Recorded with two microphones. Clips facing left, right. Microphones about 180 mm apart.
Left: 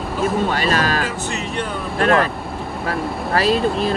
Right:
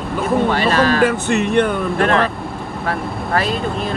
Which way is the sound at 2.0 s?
40° left (ahead or behind).